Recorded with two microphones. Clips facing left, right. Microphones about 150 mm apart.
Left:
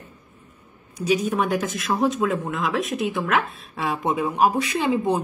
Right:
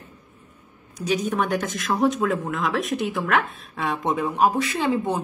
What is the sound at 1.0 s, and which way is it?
Speech, 10° left (ahead or behind).